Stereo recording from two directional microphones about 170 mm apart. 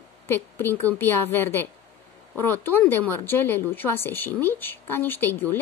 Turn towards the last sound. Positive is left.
turn(degrees=10)  # may be behind; listen again after turning